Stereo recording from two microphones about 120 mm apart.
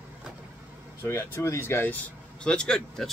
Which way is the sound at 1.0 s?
20° left (ahead or behind).